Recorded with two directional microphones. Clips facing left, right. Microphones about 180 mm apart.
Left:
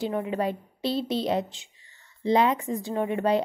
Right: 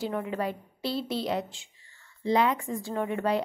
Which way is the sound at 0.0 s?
20° left (ahead or behind).